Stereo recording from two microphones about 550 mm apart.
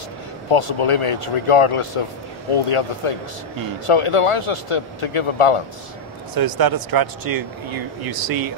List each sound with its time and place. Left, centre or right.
0.5 s speech: left
6.3 s speech: right